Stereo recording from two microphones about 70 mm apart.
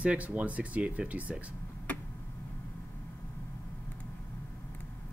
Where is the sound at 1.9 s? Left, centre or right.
Left.